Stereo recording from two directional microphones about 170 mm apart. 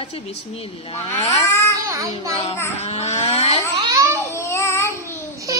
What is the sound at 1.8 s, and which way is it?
Speech, 15° right (ahead or behind).